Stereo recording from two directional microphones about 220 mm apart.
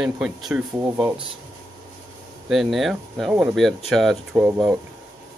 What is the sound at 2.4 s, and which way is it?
Speech, centre (ahead or behind).